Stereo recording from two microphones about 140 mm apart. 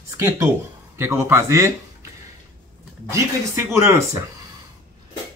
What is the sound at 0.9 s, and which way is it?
Speech, 20° right (ahead or behind).